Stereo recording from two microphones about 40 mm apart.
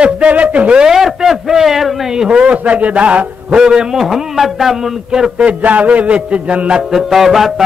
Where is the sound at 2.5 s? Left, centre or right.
Right.